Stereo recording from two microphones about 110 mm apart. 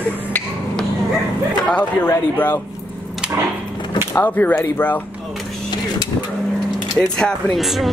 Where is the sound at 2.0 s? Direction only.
20° left (ahead or behind).